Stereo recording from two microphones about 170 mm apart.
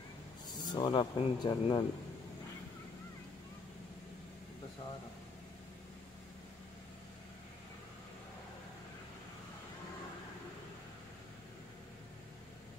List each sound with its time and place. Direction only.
0.5 s speech: 25° left (ahead or behind)